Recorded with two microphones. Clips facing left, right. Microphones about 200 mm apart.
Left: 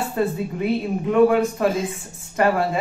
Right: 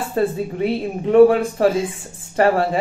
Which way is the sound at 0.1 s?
30° right (ahead or behind).